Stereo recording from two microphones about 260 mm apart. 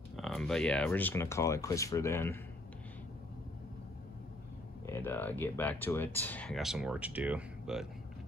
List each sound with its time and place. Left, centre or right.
0.2 s speech: centre
4.9 s speech: centre